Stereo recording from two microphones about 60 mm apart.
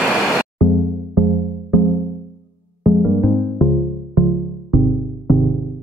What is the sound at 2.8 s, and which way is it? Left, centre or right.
Music, centre.